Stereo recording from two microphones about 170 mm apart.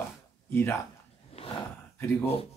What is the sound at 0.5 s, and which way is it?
Speech, 15° left (ahead or behind).